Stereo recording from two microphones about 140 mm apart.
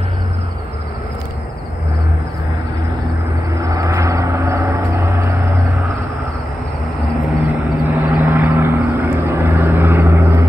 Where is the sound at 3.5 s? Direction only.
25° right (ahead or behind).